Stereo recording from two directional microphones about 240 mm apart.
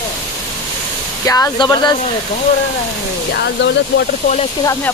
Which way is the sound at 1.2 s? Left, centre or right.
Centre.